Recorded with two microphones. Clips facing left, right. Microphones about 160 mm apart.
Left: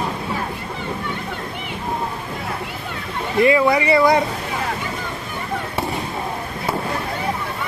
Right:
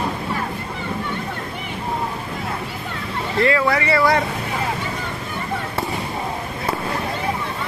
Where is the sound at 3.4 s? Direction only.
20° left (ahead or behind).